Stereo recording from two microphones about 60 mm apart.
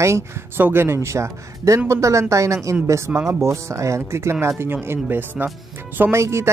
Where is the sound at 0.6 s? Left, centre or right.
Right.